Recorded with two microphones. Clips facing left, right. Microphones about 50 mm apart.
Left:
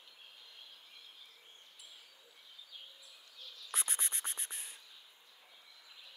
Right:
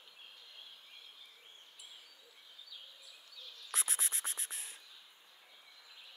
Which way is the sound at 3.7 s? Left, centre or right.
Centre.